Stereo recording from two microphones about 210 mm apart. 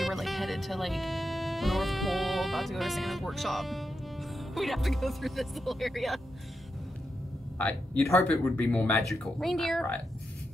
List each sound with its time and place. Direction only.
0.0 s speech: centre (ahead or behind)
7.5 s a woman's voice: 5° left (ahead or behind)